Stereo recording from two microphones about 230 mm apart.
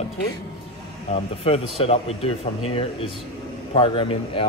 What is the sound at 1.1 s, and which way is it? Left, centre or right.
Speech, left.